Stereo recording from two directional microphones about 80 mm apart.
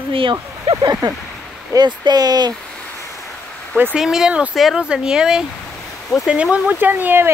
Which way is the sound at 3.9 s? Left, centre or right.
Centre.